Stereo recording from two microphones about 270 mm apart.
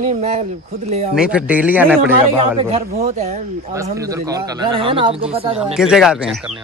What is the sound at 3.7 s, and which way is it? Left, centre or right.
Speech, centre.